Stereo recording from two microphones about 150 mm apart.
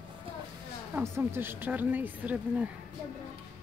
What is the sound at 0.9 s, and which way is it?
Speech, 15° right (ahead or behind).